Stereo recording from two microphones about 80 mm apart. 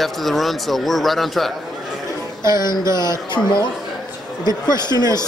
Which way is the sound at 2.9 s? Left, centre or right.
Left.